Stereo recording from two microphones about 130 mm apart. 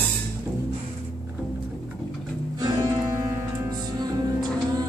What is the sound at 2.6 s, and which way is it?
Music, 30° right (ahead or behind).